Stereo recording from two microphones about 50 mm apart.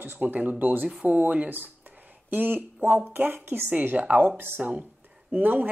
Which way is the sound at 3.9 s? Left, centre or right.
Right.